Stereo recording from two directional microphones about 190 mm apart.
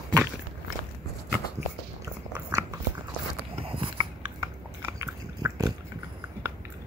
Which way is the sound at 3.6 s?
30° right (ahead or behind).